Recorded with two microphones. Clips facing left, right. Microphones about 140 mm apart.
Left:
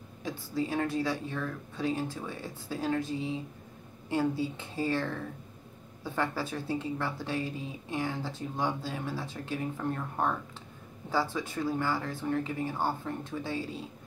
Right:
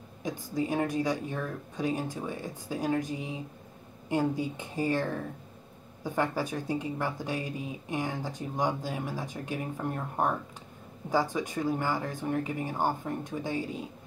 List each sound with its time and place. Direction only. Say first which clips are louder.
0.2 s speech: right 1 dB; 15° right (ahead or behind)